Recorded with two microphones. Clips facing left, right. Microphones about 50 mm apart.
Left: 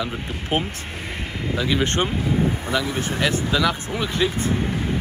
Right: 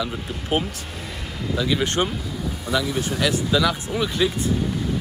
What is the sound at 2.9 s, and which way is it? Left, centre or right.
Speech, left.